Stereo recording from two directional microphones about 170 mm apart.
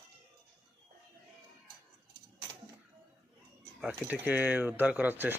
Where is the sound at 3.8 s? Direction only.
5° right (ahead or behind).